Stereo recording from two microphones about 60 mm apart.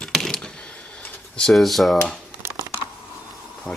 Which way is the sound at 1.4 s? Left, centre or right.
Centre.